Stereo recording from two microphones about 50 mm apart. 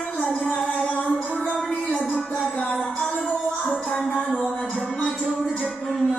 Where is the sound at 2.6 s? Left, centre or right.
Centre.